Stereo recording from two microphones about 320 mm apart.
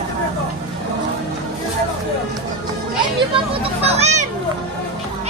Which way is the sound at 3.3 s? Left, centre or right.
Centre.